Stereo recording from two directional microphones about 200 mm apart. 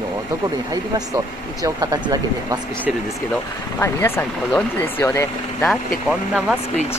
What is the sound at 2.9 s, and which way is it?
Speech, centre (ahead or behind).